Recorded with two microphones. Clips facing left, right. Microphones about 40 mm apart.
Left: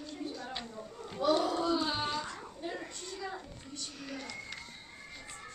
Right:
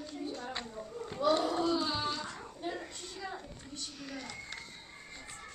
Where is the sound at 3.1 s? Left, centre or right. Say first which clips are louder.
Left 1 dB; centre.